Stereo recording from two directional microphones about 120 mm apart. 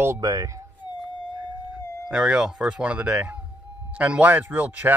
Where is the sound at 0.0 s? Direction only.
25° right (ahead or behind).